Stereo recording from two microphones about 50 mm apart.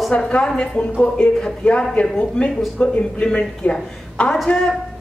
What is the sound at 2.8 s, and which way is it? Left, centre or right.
A woman's voice, left.